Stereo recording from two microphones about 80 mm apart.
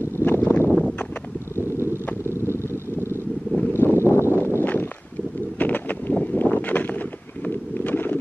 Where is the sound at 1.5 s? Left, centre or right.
Right.